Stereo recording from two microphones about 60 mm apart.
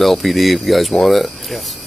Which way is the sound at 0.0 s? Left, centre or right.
Centre.